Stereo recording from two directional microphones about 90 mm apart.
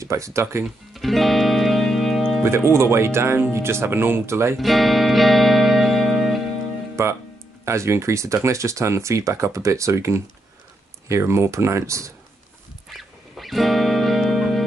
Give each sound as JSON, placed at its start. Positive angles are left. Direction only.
{"t": 0.0, "sound": "speech", "side_deg": -35}
{"t": 0.9, "sound": "music", "side_deg": 0}
{"t": 2.4, "sound": "speech", "side_deg": -30}
{"t": 4.6, "sound": "music", "side_deg": 0}
{"t": 7.0, "sound": "speech", "side_deg": -35}
{"t": 12.9, "sound": "music", "side_deg": 0}